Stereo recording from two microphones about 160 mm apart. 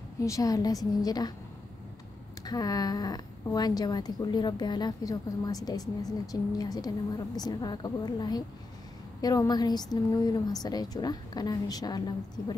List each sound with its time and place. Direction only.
0.2 s speech: 20° left (ahead or behind)
2.4 s speech: 25° left (ahead or behind)